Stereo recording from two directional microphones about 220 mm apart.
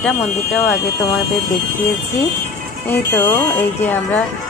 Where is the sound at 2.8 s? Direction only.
10° left (ahead or behind).